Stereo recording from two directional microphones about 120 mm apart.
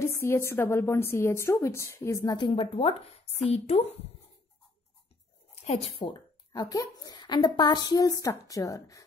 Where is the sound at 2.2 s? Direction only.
40° left (ahead or behind); by 3.8 s 60° left (ahead or behind).